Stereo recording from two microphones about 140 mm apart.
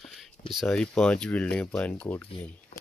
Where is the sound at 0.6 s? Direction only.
5° left (ahead or behind).